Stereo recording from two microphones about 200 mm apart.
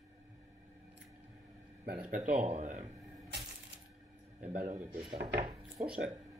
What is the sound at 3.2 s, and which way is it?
Coin, 60° right (ahead or behind).